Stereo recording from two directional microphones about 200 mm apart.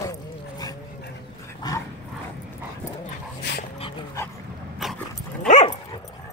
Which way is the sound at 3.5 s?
60° left (ahead or behind).